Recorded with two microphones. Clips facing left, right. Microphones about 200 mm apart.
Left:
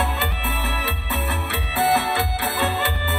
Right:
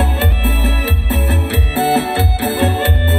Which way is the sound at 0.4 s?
35° right (ahead or behind).